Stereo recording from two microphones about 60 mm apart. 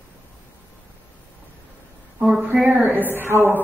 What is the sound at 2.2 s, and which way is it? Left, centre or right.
Speech, centre.